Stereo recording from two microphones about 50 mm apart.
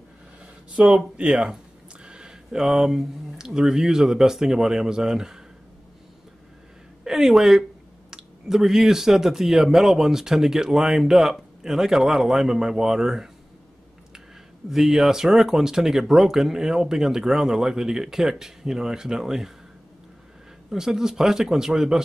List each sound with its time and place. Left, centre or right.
0.7 s speech: right
2.0 s a sound: centre
2.6 s speech: centre
7.1 s speech: centre
14.7 s speech: centre
20.7 s speech: centre